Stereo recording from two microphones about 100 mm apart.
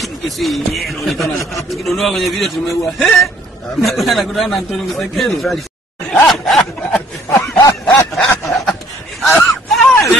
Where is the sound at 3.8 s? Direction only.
Centre (ahead or behind).